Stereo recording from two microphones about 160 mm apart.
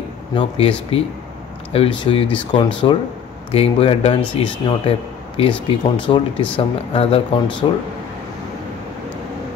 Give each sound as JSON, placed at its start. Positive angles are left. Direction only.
{"t": 0.3, "sound": "speech", "side_deg": 35}
{"t": 7.6, "sound": "speech", "side_deg": 30}